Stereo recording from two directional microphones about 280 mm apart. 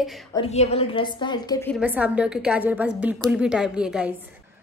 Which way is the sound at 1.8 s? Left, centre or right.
Centre.